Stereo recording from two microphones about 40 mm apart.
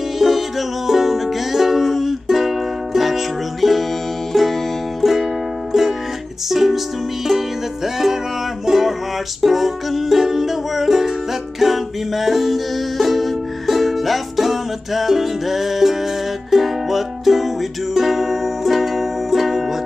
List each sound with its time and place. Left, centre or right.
0.2 s music: centre